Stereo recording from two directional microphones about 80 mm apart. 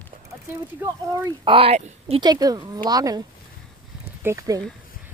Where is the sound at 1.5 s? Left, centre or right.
Right.